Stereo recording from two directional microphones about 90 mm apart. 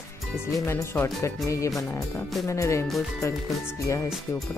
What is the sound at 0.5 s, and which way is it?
Speech, 30° left (ahead or behind).